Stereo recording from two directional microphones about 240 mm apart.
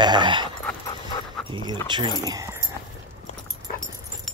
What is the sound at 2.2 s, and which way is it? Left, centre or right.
Keys jangling, centre.